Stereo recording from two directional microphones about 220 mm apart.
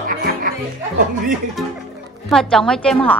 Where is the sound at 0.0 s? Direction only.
40° right (ahead or behind).